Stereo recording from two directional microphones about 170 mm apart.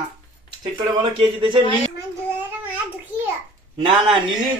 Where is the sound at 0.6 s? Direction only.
30° right (ahead or behind).